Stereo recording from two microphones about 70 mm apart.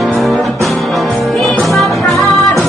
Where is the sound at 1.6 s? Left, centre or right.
Centre.